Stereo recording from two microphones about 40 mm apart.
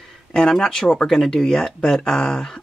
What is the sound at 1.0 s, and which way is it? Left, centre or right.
Speech, centre.